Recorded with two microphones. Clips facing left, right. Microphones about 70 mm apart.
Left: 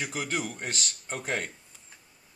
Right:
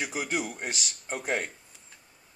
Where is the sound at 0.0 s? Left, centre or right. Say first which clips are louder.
Right 1 dB; centre.